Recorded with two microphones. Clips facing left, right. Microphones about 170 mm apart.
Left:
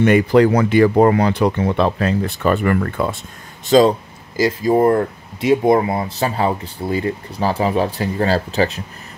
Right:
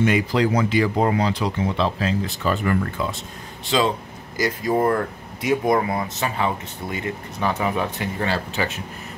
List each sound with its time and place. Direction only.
0.0 s speech: 55° left (ahead or behind)
3.6 s speech: 40° left (ahead or behind)
4.4 s speech: 25° left (ahead or behind)